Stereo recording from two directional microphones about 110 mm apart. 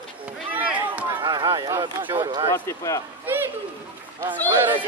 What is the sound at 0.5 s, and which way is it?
Chop, 15° right (ahead or behind).